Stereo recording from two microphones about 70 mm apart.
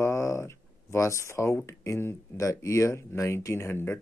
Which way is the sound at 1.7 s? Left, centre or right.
Left.